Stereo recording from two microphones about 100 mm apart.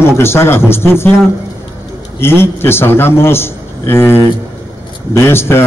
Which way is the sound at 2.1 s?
25° left (ahead or behind).